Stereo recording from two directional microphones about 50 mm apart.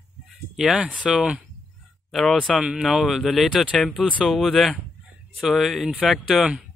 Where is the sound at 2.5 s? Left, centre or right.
Centre.